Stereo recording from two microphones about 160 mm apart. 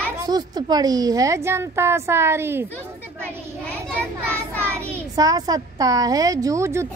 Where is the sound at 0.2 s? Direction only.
25° right (ahead or behind).